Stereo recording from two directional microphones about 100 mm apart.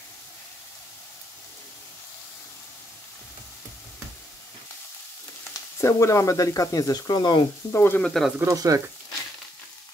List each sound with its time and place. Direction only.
5.5 s speech: 30° left (ahead or behind); by 7.4 s 45° left (ahead or behind)
7.7 s frying: 25° left (ahead or behind)
8.0 s speech: 5° left (ahead or behind)
8.5 s speech: 35° right (ahead or behind)